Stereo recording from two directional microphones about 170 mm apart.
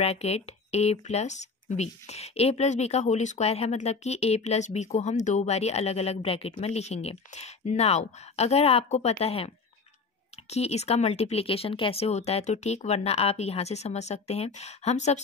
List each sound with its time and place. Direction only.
0.0 s speech: 40° left (ahead or behind)
10.5 s speech: 40° left (ahead or behind)